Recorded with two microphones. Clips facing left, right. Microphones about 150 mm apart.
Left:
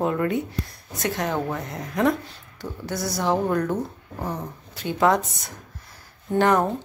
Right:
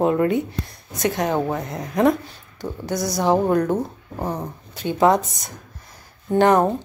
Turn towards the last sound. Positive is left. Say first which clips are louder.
# right 4 dB
turn(degrees=-20)  # may be behind; listen again after turning